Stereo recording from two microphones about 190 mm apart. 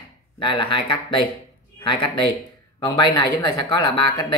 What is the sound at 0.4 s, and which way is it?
Speech, 25° left (ahead or behind).